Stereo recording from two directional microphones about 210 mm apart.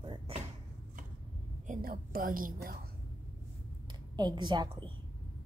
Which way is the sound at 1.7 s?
45° right (ahead or behind).